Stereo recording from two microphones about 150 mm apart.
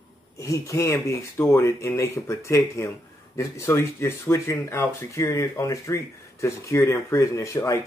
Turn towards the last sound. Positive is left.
turn(degrees=20)  # may be behind; listen again after turning